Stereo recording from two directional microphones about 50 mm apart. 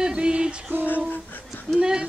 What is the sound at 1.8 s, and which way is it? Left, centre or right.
A capella, centre.